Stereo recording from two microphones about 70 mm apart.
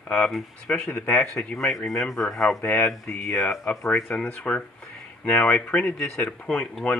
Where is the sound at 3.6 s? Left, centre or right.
Centre.